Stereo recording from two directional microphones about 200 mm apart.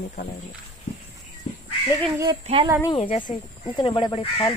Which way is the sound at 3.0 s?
25° left (ahead or behind).